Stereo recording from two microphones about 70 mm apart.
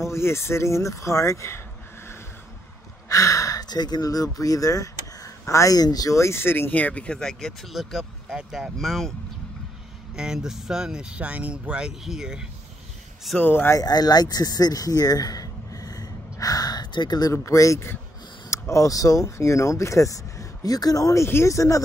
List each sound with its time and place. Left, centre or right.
0.0 s speech: left
3.1 s speech: left
5.8 s speech: left
6.1 s speech: left; by 9.1 s centre
10.1 s speech: centre
13.4 s speech: left
13.7 s a sound: left
17.3 s speech: left